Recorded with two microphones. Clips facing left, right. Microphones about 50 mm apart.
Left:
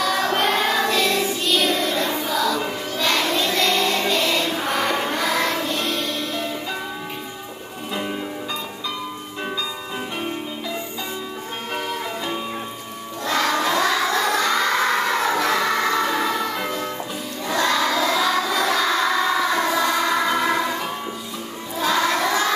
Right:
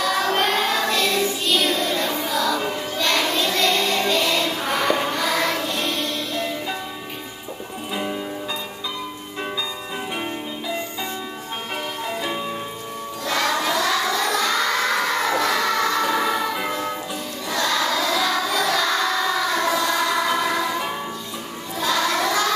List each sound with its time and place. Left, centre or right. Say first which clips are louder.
0.0 s choir: even; centre
1.4 s music: left 1 dB; centre
7.9 s music: even; centre
13.6 s child singing: left 2 dB; left
13.8 s a sound: left 1 dB; centre
14.3 s a sound: left 1 dB; left
15.0 s crowd: left 1 dB; centre
15.6 s music: even; centre
16.1 s music: right 1 dB; centre
17.5 s music: left 3 dB; centre
17.7 s child singing: left 1 dB; centre
21.7 s crowd: left 2 dB; centre
22.2 s child singing: even; left